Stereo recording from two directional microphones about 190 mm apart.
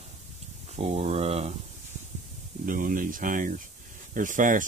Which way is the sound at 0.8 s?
35° right (ahead or behind).